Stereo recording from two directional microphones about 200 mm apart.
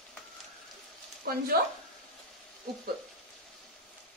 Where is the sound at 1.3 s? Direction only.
50° right (ahead or behind).